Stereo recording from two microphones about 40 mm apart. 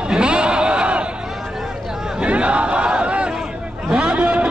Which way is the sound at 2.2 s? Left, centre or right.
Right.